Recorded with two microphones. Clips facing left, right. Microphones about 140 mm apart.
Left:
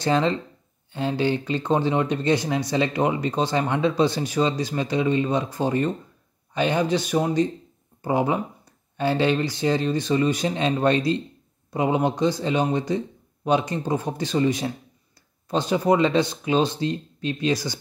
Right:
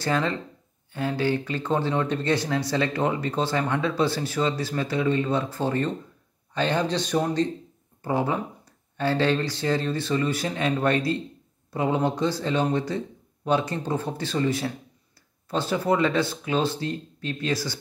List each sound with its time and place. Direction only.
0.0 s speech: 20° left (ahead or behind)